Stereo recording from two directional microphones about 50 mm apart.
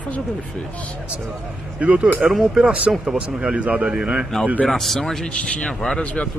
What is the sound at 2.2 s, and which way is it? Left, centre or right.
Speech, centre.